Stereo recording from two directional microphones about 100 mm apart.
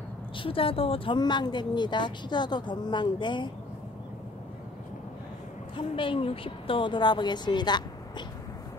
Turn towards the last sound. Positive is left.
turn(degrees=45)  # may be behind; listen again after turning